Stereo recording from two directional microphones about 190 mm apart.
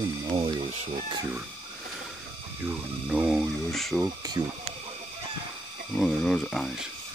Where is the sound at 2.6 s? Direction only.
10° right (ahead or behind).